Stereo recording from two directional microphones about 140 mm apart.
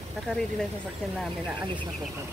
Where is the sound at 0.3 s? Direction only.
10° left (ahead or behind).